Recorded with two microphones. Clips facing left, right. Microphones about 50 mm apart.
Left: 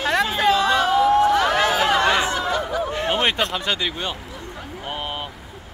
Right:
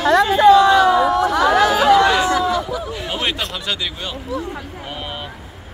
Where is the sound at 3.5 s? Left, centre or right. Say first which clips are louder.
Left 1 dB; left.